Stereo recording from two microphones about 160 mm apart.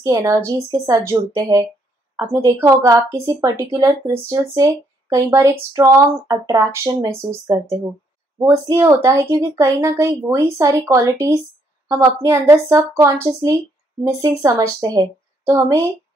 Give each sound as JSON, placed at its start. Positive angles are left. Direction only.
{"t": 0.0, "sound": "speech", "side_deg": -20}